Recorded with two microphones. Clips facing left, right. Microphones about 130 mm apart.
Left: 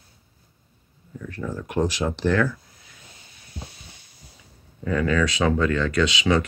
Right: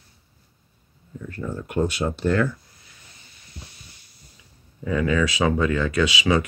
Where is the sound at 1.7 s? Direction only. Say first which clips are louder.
Even; 90° left.